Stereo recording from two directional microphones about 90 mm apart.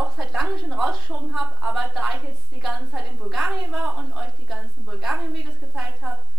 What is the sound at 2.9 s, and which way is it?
A woman's voice, 10° right (ahead or behind).